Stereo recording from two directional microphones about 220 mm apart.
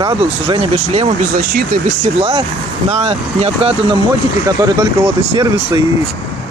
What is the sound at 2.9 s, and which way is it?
Speech, 30° right (ahead or behind).